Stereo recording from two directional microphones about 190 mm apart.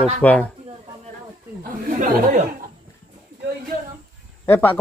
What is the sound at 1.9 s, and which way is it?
Speech, 45° right (ahead or behind).